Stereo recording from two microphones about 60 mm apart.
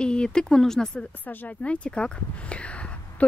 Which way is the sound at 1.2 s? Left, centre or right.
Left.